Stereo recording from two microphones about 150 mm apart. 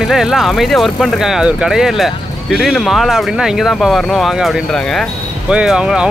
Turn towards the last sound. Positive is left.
turn(degrees=-5)  # may be behind; listen again after turning